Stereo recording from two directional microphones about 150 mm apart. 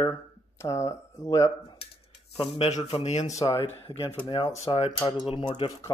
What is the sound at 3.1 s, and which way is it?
Speech, 50° left (ahead or behind).